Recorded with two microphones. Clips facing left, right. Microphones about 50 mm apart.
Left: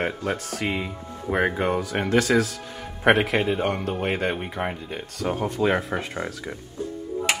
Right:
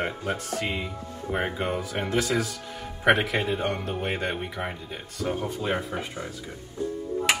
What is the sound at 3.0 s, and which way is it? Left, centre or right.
Speech, left.